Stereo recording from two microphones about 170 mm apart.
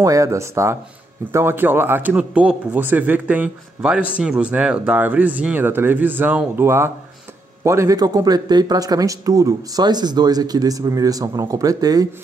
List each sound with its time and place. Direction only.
0.0 s speech: 20° right (ahead or behind)